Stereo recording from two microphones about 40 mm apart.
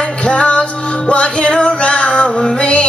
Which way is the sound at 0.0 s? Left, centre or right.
Left.